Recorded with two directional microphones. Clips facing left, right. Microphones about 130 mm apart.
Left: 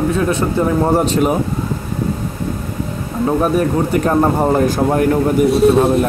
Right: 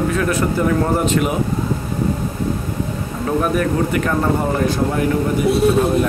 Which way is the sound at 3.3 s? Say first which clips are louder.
Left 3 dB; 30° left (ahead or behind).